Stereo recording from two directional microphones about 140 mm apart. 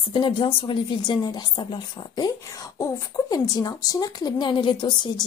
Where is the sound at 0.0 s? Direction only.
35° left (ahead or behind).